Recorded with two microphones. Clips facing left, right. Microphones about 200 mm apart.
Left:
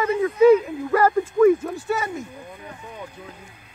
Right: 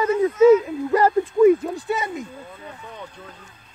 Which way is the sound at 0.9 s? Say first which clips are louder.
Right 1 dB; 20° right (ahead or behind).